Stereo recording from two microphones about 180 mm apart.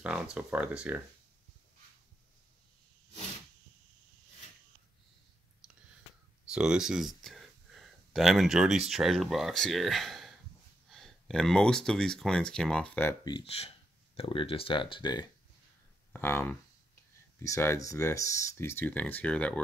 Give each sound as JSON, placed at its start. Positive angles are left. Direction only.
{"t": 0.0, "sound": "speech", "side_deg": -5}
{"t": 6.5, "sound": "speech", "side_deg": -5}
{"t": 13.2, "sound": "speech", "side_deg": 30}
{"t": 16.1, "sound": "speech", "side_deg": 10}